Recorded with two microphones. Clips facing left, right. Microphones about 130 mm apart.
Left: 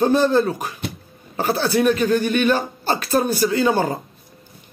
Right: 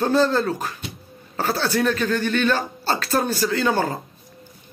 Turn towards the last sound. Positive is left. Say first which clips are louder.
# left 3 dB
turn(degrees=15)  # may be behind; listen again after turning